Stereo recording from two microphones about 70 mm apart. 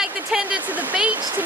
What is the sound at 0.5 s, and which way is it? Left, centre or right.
Speech, right.